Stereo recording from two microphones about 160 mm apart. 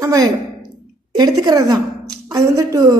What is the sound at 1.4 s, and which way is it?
A woman's voice, 20° right (ahead or behind).